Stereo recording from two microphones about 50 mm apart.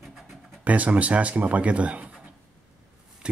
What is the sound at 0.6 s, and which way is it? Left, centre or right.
Speech, right.